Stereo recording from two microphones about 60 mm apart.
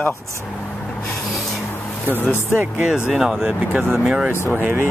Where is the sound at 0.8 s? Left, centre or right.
Centre.